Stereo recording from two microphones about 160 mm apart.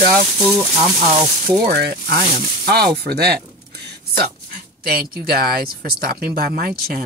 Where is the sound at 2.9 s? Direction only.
85° right.